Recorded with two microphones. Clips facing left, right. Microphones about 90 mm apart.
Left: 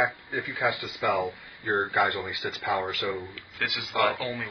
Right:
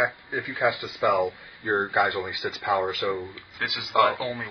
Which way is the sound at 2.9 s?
Centre (ahead or behind).